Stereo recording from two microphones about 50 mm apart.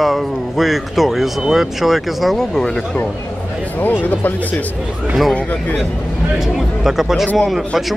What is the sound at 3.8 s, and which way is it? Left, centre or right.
Speech, left.